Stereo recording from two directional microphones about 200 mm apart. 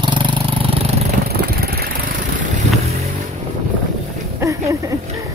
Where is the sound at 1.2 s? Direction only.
50° right (ahead or behind).